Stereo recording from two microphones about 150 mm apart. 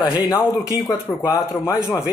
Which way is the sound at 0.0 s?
25° left (ahead or behind).